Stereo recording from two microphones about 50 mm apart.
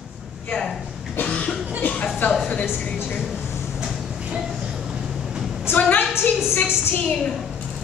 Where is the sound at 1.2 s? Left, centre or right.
Left.